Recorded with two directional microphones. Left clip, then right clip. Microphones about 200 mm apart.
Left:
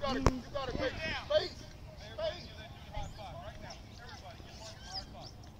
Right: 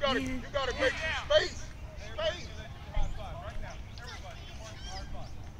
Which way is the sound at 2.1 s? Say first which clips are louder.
Right 5 dB; 45° left (ahead or behind).